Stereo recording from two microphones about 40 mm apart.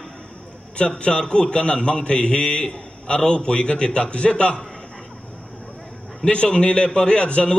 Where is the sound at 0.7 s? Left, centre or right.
Left.